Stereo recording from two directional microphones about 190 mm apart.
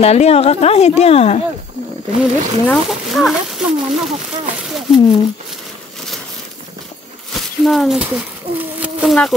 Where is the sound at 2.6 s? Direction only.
Centre (ahead or behind).